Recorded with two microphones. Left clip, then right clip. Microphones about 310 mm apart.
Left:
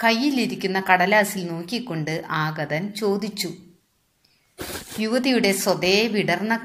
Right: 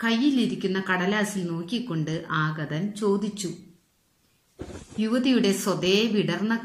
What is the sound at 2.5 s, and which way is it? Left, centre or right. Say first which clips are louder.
Speech: left 6 dB; left.